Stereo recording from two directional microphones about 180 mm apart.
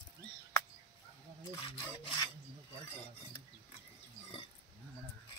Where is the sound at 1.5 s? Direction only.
25° left (ahead or behind).